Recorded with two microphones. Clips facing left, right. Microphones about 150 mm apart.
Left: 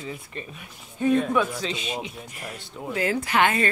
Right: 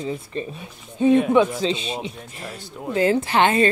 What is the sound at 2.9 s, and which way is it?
Speech, 30° right (ahead or behind).